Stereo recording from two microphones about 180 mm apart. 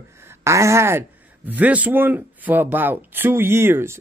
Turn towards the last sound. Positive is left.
turn(degrees=-15)  # may be behind; listen again after turning